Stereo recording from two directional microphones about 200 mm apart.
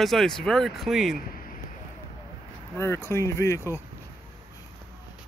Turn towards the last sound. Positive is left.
turn(degrees=15)  # may be behind; listen again after turning